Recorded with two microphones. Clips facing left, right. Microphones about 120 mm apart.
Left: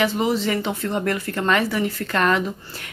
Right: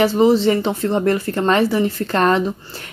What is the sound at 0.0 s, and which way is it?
Speech, 30° right (ahead or behind).